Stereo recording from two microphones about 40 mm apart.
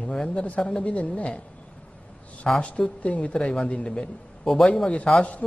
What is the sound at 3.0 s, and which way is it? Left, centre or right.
A woman's voice, left.